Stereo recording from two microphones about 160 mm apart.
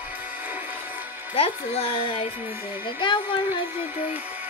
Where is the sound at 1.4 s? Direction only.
35° left (ahead or behind).